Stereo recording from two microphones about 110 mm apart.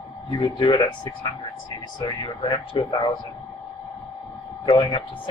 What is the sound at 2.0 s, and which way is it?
Speech, 45° left (ahead or behind).